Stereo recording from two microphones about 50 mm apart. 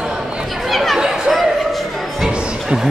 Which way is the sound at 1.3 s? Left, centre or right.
Centre.